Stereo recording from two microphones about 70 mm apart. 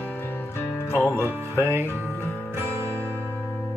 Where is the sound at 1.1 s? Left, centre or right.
Right.